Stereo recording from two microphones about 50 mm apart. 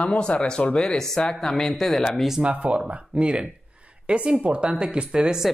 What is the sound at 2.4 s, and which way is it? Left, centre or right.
Speech, right.